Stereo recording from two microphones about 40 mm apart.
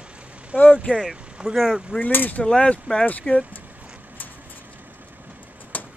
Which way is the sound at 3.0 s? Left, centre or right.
Left.